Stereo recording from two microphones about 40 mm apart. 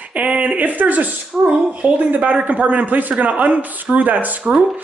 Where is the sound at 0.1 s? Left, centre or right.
Right.